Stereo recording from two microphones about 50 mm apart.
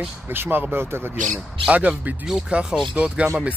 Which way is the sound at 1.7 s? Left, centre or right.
Right.